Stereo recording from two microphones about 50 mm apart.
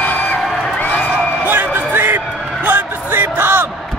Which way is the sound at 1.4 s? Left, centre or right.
Right.